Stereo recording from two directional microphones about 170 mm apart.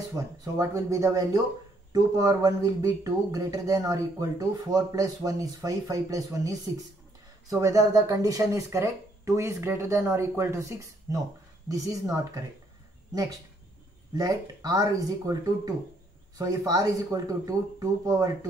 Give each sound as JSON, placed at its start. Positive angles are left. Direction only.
{"t": 0.1, "sound": "speech", "side_deg": -20}
{"t": 14.1, "sound": "speech", "side_deg": -20}